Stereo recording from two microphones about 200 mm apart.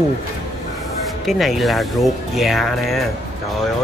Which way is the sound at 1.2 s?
Centre (ahead or behind).